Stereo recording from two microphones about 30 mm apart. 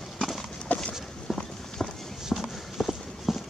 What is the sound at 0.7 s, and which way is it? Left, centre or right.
Walk, left.